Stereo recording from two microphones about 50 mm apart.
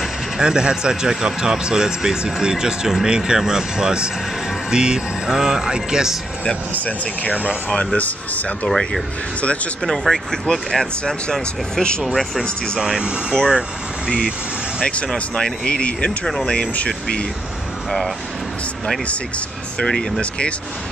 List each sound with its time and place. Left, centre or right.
0.4 s a man's voice: centre
7.7 s speech: centre
8.0 s speech: left
8.6 s speech: centre
12.0 s a man's voice: centre
15.1 s speech: centre
19.8 s speech: centre